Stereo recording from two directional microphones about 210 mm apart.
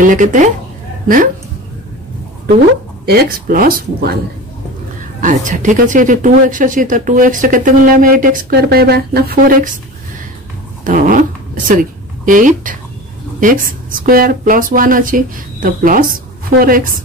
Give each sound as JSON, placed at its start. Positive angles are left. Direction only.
{"t": 0.0, "sound": "a woman's voice", "side_deg": -40}
{"t": 3.1, "sound": "speech", "side_deg": -45}
{"t": 5.2, "sound": "speech", "side_deg": -40}
{"t": 10.8, "sound": "speech", "side_deg": -40}